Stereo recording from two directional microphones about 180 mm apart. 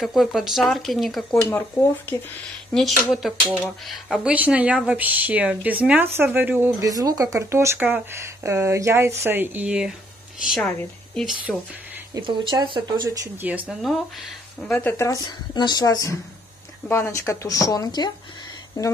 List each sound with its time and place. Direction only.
0.0 s speech: centre (ahead or behind)
1.5 s speech: 10° left (ahead or behind)
3.1 s a woman's voice: centre (ahead or behind)
12.1 s speech: 25° right (ahead or behind)
13.5 s speech: 5° right (ahead or behind)
14.7 s a woman's voice: 10° left (ahead or behind)